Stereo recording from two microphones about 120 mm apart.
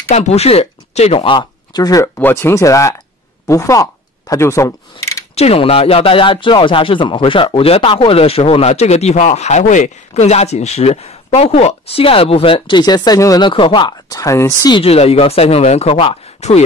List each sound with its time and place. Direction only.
0.1 s speech: 65° left (ahead or behind); by 2.0 s 30° left (ahead or behind)
2.1 s speech: 20° left (ahead or behind)
5.3 s speech: 55° left (ahead or behind); by 13.5 s 30° left (ahead or behind)
13.5 s speech: 45° left (ahead or behind); by 14.7 s 25° left (ahead or behind)
14.7 s speech: 55° left (ahead or behind); by 16.6 s 70° left (ahead or behind)